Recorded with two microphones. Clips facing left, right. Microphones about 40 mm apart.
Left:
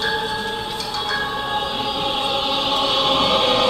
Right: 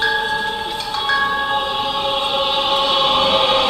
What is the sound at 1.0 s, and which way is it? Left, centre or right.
Choir, right.